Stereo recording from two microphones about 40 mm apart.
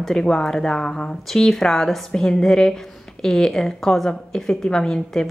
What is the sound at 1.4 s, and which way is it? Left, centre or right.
Speech, centre.